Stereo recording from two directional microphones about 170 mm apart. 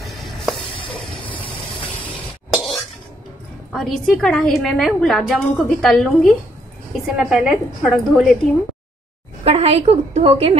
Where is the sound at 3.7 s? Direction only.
Centre (ahead or behind).